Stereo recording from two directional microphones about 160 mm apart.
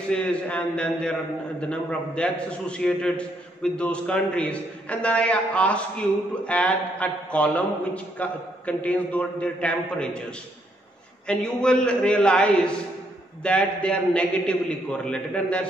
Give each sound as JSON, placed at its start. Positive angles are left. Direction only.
{"t": 0.1, "sound": "a man's voice", "side_deg": 5}
{"t": 11.2, "sound": "a man's voice", "side_deg": 5}